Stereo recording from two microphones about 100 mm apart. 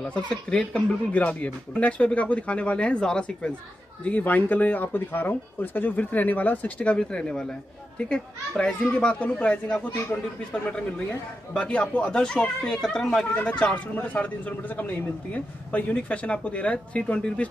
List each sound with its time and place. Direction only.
0.0 s a man's voice: 10° left (ahead or behind)
10.1 s a man's voice: 20° left (ahead or behind)